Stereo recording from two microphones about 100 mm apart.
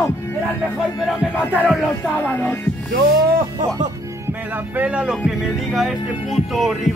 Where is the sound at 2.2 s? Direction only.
20° left (ahead or behind).